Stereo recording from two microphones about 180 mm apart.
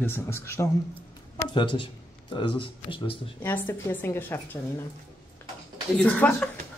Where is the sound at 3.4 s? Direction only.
10° left (ahead or behind).